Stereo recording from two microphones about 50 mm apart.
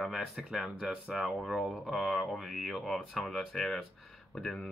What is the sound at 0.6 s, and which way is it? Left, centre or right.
Speech, right.